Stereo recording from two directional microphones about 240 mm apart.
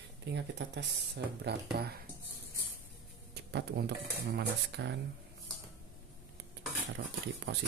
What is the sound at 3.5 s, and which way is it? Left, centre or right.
Speech, right.